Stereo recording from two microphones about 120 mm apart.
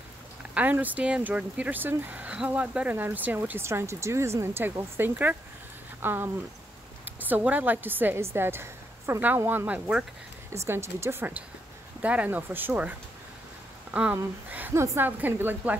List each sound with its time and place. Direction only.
0.6 s speech: 15° right (ahead or behind)
10.7 s a woman's voice: 20° right (ahead or behind)
13.9 s speech: 10° right (ahead or behind)